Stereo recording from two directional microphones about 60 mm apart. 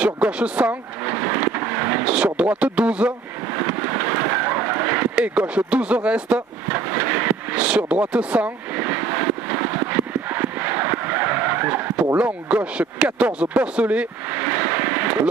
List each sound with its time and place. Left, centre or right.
0.0 s speech: right
1.1 s vehicle: right
2.1 s speech: right
3.5 s vehicle: right; by 6.4 s centre
6.7 s speech: right
8.7 s vehicle: right
12.2 s speech: right
14.3 s a sound: right